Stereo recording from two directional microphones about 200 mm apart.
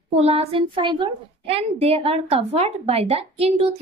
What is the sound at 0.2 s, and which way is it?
A woman's voice, 30° right (ahead or behind).